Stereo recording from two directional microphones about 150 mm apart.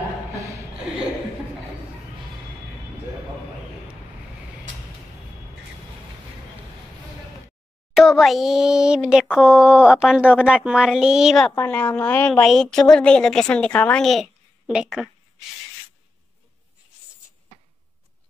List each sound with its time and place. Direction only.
0.4 s a sound: 20° right (ahead or behind)
7.9 s a woman's voice: centre (ahead or behind)
11.5 s a woman's voice: 15° left (ahead or behind); by 15.0 s 5° right (ahead or behind)